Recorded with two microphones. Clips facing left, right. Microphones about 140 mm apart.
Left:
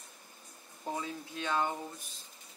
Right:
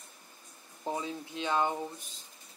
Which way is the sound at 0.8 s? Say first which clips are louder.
Right 3 dB; 20° right (ahead or behind).